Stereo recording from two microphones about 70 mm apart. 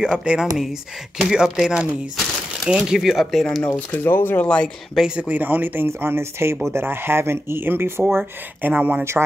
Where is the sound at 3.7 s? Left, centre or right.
Left.